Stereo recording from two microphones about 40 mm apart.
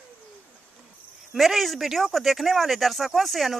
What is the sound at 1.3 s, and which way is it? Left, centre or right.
A woman's voice, centre.